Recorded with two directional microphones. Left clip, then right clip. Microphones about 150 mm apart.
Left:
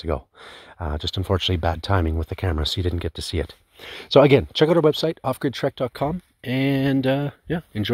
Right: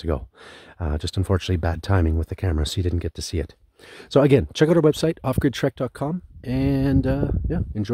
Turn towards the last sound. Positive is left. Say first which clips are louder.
# left 2 dB
turn(degrees=-20)  # may be behind; listen again after turning